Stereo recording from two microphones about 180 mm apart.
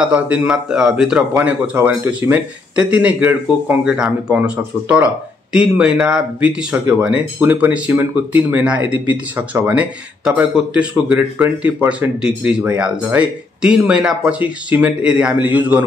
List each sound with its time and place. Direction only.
0.0 s speech: 5° right (ahead or behind)